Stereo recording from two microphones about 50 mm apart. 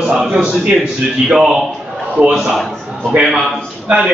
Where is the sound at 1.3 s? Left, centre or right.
Centre.